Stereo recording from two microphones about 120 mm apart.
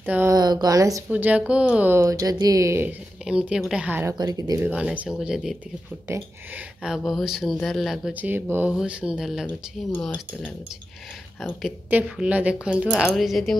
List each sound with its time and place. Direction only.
0.0 s speech: 15° right (ahead or behind)
0.3 s speech: 35° right (ahead or behind)
1.1 s a woman's voice: 10° right (ahead or behind)
2.0 s speech: 30° right (ahead or behind)
3.3 s a woman's voice: 5° right (ahead or behind)
4.2 s speech: 30° right (ahead or behind)
4.6 s a woman's voice: 10° right (ahead or behind)
6.0 s speech: 25° right (ahead or behind)
7.1 s speech: centre (ahead or behind)
8.1 s a woman's voice: 15° right (ahead or behind)
10.0 s cutlery: 10° left (ahead or behind)
11.9 s a woman's voice: 10° right (ahead or behind)